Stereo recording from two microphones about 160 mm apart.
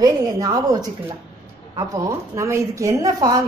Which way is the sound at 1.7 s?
20° right (ahead or behind).